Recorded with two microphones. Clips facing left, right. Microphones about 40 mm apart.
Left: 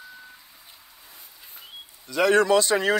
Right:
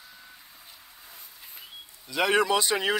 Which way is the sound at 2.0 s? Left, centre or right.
Centre.